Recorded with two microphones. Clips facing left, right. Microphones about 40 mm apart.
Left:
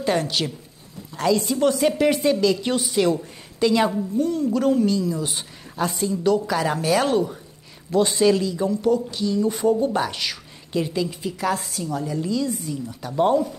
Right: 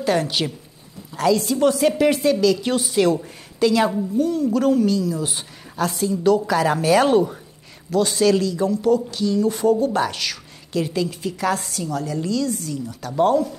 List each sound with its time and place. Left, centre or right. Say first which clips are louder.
0.0 s a woman's voice: right 2 dB; centre
7.9 s a woman's voice: even; centre